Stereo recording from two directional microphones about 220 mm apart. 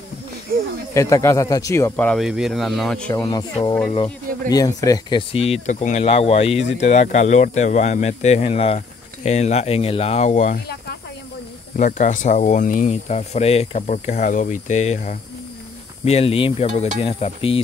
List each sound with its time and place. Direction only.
0.5 s speech: 40° right (ahead or behind)
0.9 s a man's voice: 15° left (ahead or behind)
3.2 s speech: 20° left (ahead or behind)